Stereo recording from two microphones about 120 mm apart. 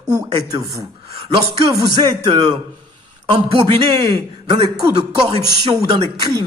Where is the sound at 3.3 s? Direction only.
45° right (ahead or behind).